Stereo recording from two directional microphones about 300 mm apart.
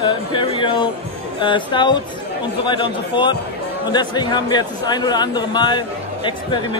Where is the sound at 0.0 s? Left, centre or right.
Centre.